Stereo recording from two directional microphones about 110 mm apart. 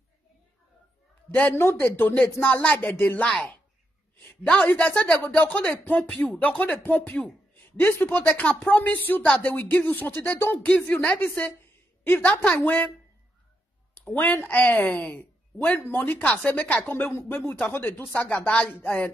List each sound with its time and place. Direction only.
1.3 s a man's voice: 20° left (ahead or behind)
14.1 s speech: 15° left (ahead or behind)